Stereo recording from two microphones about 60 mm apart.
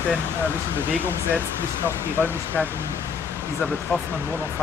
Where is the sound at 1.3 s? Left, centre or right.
Right.